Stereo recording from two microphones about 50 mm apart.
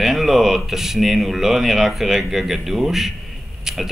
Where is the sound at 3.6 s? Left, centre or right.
Centre.